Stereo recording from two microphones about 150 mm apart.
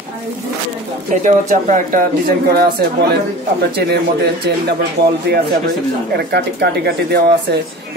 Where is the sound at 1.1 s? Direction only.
55° right (ahead or behind).